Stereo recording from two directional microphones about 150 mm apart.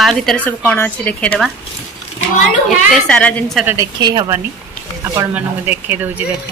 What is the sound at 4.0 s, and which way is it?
Speech, 25° right (ahead or behind).